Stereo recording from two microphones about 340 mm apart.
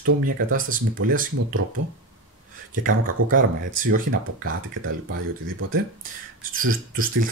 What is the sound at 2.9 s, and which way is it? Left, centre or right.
Speech, right.